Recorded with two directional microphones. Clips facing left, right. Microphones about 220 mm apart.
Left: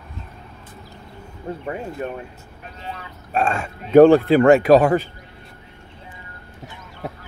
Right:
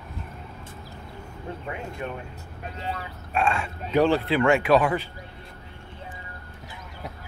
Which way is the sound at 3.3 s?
40° left (ahead or behind).